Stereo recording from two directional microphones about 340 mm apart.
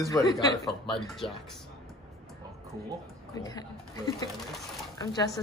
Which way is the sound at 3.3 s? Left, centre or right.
Centre.